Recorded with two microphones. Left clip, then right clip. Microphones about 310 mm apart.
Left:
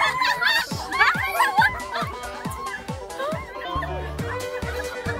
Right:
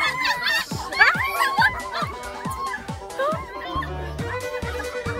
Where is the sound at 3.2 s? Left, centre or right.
Centre.